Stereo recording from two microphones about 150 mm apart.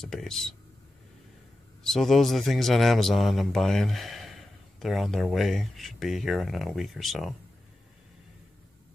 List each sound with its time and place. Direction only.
0.0 s a man's voice: 5° left (ahead or behind)
1.8 s a man's voice: centre (ahead or behind)